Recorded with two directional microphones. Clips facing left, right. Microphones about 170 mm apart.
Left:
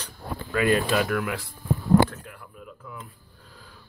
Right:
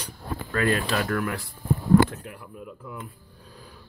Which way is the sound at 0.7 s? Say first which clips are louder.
Left 3 dB; 20° left (ahead or behind).